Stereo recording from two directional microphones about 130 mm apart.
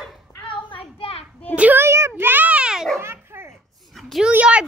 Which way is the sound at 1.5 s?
10° right (ahead or behind).